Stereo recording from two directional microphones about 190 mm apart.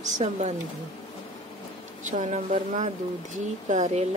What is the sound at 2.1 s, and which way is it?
Speech, 40° right (ahead or behind).